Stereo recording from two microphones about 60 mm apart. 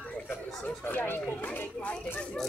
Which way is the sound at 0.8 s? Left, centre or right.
Left.